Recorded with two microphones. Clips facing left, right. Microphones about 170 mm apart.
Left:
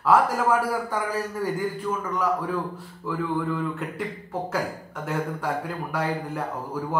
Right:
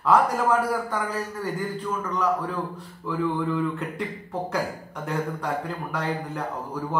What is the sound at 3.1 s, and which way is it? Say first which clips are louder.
Speech: right 1 dB; centre (ahead or behind).